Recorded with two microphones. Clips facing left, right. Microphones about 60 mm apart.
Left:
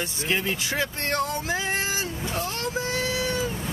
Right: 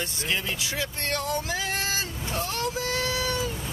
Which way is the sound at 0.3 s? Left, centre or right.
Left.